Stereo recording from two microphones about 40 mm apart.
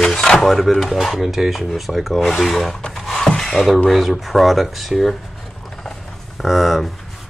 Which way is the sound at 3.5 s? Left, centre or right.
Centre.